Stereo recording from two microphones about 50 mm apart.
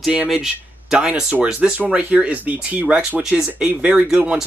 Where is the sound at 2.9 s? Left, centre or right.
Centre.